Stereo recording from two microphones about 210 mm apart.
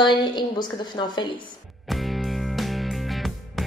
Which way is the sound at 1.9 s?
Centre (ahead or behind).